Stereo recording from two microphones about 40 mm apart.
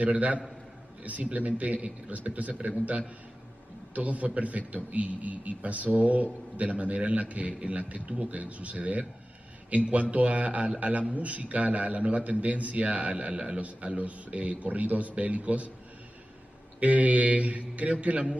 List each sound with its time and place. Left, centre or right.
0.0 s a man's voice: right
16.8 s a man's voice: right